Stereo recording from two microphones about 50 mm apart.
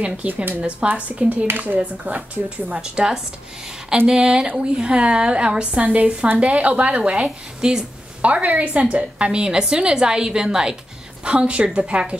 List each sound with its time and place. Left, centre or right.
0.2 s a woman's voice: right
1.5 s a woman's voice: right
2.8 s a woman's voice: centre
7.2 s a woman's voice: centre
8.2 s a woman's voice: right